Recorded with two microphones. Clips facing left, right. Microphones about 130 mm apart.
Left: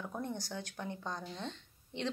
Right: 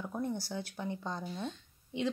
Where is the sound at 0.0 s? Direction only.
5° right (ahead or behind).